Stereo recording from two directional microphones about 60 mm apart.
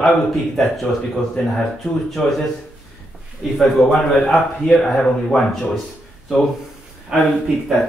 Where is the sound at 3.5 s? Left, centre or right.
Centre.